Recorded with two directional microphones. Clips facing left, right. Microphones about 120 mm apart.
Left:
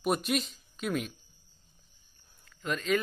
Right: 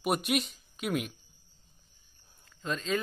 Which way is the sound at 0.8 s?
10° right (ahead or behind).